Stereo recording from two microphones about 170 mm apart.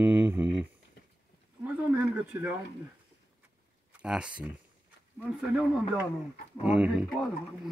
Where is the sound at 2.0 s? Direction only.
5° right (ahead or behind).